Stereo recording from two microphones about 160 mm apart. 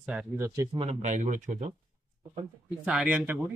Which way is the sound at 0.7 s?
45° right (ahead or behind).